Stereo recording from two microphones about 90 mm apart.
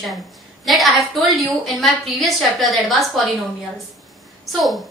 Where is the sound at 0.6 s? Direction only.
Centre (ahead or behind).